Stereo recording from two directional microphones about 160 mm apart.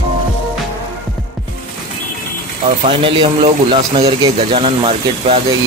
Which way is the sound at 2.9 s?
30° right (ahead or behind).